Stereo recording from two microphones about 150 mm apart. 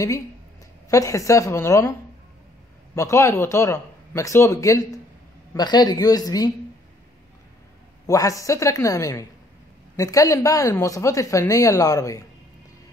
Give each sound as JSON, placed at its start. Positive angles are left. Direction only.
{"t": 0.8, "sound": "a woman's voice", "side_deg": 20}
{"t": 8.1, "sound": "a woman's voice", "side_deg": 20}